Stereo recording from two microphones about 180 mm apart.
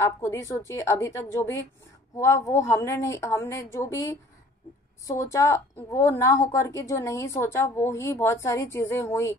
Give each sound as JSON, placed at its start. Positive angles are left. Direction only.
{"t": 0.0, "sound": "a woman's voice", "side_deg": 15}